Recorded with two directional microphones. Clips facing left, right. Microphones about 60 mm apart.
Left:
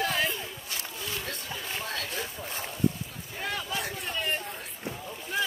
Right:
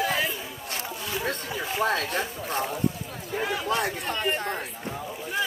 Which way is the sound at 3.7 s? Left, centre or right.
Right.